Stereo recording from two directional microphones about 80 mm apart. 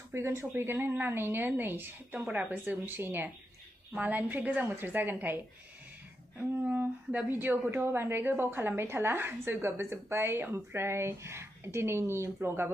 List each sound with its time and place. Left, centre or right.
0.1 s a woman's voice: right
6.6 s a woman's voice: right